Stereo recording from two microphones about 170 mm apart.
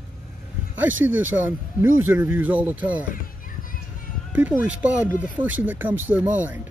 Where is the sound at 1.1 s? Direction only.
10° right (ahead or behind).